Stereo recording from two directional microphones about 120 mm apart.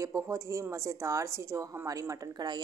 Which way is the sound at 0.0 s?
25° right (ahead or behind).